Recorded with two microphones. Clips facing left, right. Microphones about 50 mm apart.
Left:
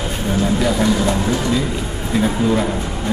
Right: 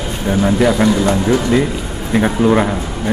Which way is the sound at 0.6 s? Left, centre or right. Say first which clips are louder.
Right 6 dB; centre.